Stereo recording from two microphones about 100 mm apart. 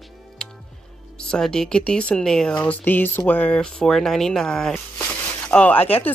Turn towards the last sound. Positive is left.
turn(degrees=15)  # may be behind; listen again after turning